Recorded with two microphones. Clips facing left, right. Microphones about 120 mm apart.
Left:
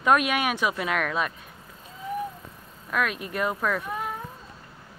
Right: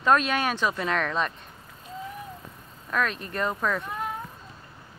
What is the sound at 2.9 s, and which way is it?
Speech, 10° left (ahead or behind).